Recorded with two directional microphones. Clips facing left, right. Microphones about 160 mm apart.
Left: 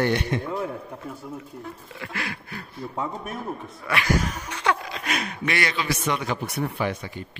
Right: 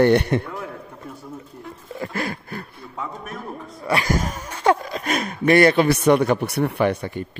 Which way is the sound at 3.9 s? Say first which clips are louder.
Right 2 dB; 40° right (ahead or behind).